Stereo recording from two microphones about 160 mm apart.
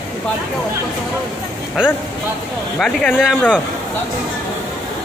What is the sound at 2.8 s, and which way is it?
Speech, 5° left (ahead or behind).